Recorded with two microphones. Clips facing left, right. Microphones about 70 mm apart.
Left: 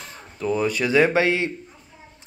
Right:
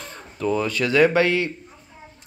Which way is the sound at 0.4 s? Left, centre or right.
Centre.